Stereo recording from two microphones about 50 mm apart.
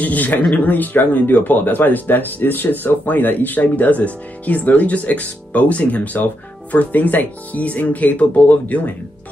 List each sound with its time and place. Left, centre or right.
0.0 s speech: left